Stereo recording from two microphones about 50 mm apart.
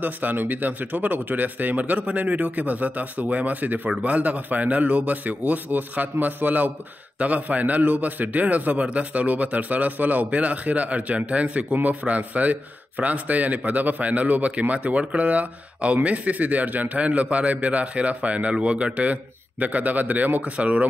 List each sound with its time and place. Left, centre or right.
0.0 s speech: right